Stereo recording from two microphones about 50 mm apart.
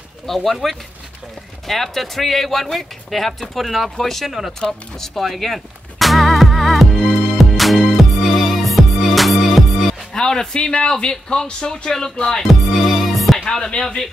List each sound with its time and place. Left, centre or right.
0.3 s speech: centre
4.0 s a sound: centre
10.1 s speech: centre
12.4 s music: centre
13.5 s speech: centre